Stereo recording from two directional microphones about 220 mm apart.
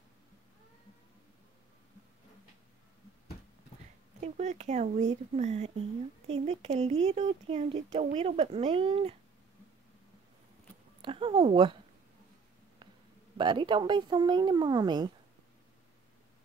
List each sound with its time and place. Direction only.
4.2 s speech: 30° right (ahead or behind)
11.0 s speech: 25° right (ahead or behind)
13.4 s speech: 20° right (ahead or behind)